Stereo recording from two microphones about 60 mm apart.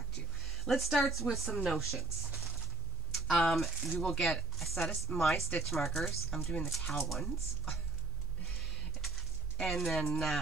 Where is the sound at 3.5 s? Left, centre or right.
Centre.